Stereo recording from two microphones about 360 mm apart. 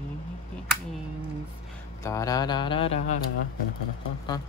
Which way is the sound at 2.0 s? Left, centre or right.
Centre.